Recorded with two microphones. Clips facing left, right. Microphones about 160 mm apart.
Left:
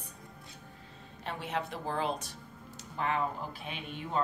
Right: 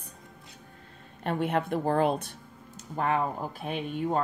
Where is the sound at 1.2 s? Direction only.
55° right (ahead or behind).